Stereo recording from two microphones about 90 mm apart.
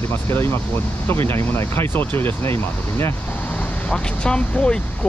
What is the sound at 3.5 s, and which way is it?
Speech, 15° left (ahead or behind).